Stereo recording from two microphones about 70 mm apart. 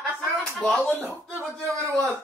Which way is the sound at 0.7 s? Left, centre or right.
Centre.